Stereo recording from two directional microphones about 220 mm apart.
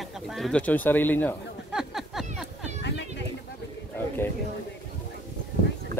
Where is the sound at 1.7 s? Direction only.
Centre (ahead or behind).